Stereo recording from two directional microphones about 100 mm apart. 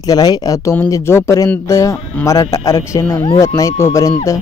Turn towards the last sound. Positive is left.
turn(degrees=30)  # may be behind; listen again after turning